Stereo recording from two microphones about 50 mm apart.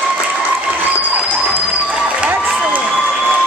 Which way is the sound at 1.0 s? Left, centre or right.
Right.